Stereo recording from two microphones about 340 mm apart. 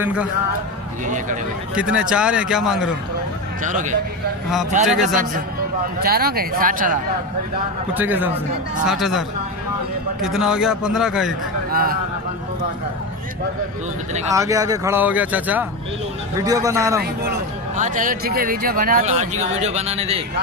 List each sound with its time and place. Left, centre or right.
0.0 s a man's voice: centre
1.0 s speech: right
2.0 s a man's voice: centre
3.6 s speech: right
7.9 s a man's voice: centre
10.2 s a man's voice: centre
11.7 s speech: right
14.1 s speech: centre
17.0 s speech: right